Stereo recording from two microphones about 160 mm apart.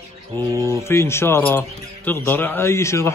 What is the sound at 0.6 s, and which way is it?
A man's voice, 15° left (ahead or behind).